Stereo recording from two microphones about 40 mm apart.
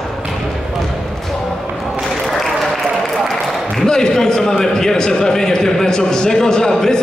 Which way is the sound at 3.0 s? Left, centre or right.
Centre.